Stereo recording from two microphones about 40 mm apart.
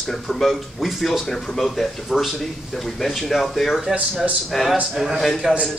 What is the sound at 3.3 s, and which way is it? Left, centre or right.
Speech, centre.